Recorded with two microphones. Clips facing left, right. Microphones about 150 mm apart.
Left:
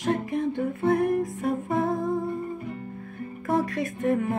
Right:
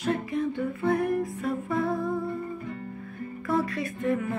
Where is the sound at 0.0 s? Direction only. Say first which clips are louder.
Left 2 dB; 45° left (ahead or behind).